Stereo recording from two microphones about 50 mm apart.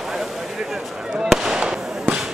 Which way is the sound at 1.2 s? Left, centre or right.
Centre.